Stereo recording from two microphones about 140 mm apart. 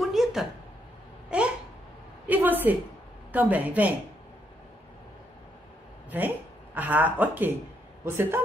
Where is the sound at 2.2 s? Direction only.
10° right (ahead or behind).